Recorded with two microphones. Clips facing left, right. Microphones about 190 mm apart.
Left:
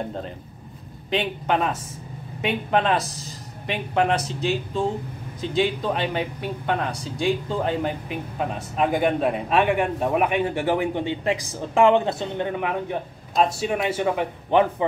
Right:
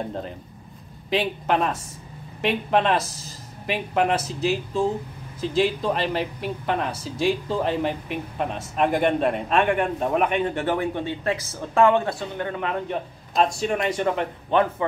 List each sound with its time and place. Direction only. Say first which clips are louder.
1.1 s speech: right 1 dB; centre (ahead or behind); by 12.9 s 15° left (ahead or behind)
13.3 s speech: even; centre (ahead or behind)